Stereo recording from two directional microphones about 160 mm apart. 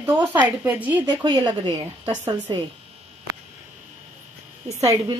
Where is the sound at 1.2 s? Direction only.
25° right (ahead or behind).